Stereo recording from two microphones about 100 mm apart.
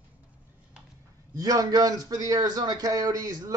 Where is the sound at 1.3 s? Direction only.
35° right (ahead or behind).